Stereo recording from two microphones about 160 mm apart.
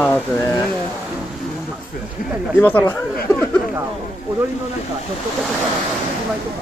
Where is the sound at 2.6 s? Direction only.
10° left (ahead or behind).